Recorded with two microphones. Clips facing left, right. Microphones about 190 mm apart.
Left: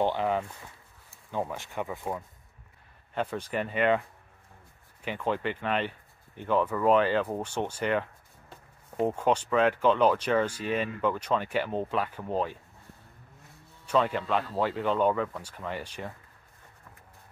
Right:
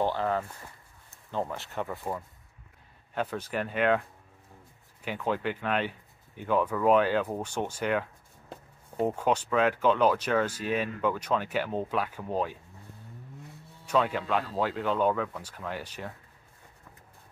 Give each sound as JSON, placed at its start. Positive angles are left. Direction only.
{"t": 0.0, "sound": "speech", "side_deg": 15}
{"t": 3.3, "sound": "speech", "side_deg": -5}
{"t": 5.0, "sound": "speech", "side_deg": -5}
{"t": 13.8, "sound": "speech", "side_deg": -5}